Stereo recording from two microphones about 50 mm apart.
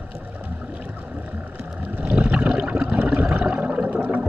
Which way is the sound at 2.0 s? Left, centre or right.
Right.